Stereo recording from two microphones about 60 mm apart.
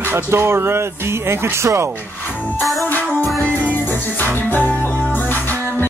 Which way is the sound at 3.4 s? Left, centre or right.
Left.